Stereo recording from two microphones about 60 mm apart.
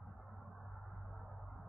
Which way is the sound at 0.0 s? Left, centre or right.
Centre.